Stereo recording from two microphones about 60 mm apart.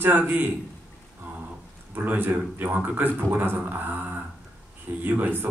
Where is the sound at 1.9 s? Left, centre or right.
Right.